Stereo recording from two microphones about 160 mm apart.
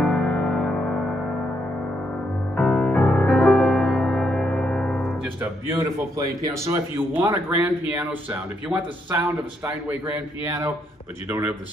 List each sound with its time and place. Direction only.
0.0 s music: centre (ahead or behind)
2.5 s music: 5° left (ahead or behind)
5.4 s speech: 15° right (ahead or behind)
9.8 s speech: 15° right (ahead or behind)